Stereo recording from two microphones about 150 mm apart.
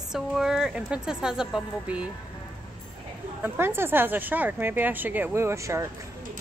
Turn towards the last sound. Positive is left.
turn(degrees=-20)  # may be behind; listen again after turning